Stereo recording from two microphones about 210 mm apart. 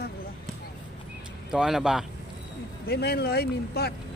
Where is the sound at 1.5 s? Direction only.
5° right (ahead or behind).